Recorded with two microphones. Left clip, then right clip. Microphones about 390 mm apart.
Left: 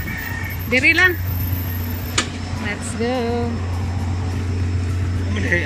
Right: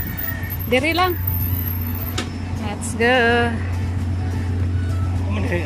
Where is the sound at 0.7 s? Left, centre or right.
Centre.